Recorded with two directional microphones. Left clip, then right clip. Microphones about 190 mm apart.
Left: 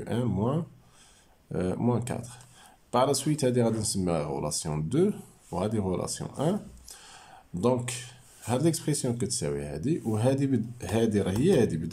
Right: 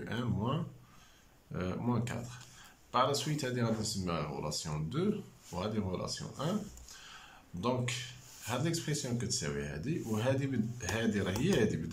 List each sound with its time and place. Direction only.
0.0 s speech: 30° left (ahead or behind)